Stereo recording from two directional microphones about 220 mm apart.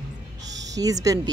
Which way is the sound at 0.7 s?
15° right (ahead or behind).